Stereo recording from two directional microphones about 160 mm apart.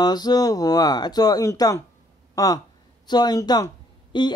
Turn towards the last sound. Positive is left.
turn(degrees=25)  # may be behind; listen again after turning